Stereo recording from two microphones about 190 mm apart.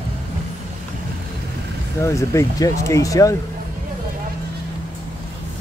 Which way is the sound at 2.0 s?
15° left (ahead or behind).